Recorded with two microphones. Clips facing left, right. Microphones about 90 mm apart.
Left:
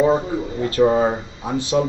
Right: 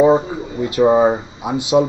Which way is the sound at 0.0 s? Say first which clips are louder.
Right 4 dB; 15° right (ahead or behind).